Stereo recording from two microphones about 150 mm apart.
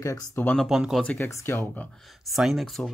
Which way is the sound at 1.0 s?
10° left (ahead or behind).